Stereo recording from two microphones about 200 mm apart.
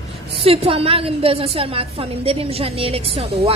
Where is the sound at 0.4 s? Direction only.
30° right (ahead or behind).